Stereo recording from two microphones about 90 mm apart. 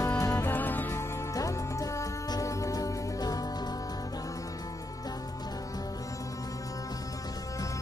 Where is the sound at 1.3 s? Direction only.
35° left (ahead or behind).